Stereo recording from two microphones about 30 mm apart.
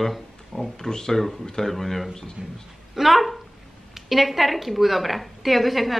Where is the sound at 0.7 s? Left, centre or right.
Centre.